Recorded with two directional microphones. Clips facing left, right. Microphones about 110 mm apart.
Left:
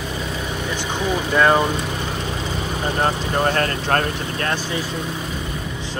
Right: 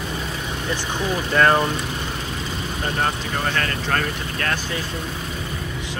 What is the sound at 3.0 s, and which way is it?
Speech, 30° left (ahead or behind).